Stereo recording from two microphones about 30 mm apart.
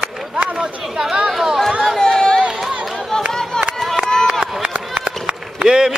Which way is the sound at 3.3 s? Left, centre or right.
Centre.